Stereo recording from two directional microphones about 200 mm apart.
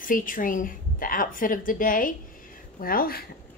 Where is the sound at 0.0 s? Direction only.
40° left (ahead or behind).